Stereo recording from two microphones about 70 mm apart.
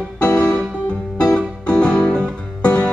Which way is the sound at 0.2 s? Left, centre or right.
Centre.